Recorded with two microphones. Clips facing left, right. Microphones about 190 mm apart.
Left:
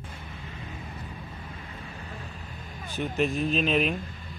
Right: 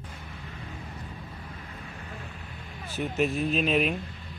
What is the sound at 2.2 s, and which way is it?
Vehicle, 40° left (ahead or behind).